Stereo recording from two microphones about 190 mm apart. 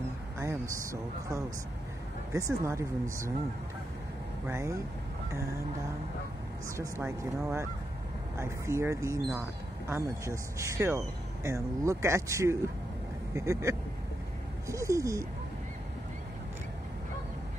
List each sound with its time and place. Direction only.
0.4 s speech: 15° right (ahead or behind)
2.3 s speech: 15° right (ahead or behind)
4.5 s speech: 15° right (ahead or behind)
6.8 s speech: 15° right (ahead or behind)